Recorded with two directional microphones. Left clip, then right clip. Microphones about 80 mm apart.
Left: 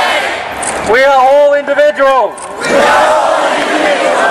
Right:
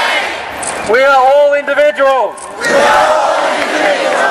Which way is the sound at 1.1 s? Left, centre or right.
Right.